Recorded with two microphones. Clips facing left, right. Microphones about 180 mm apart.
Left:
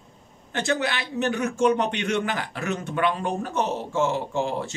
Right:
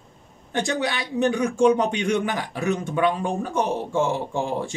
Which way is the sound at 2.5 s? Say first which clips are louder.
Right 4 dB; 15° right (ahead or behind).